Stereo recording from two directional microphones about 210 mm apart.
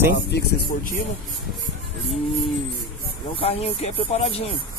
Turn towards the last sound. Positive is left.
turn(degrees=30)  # may be behind; listen again after turning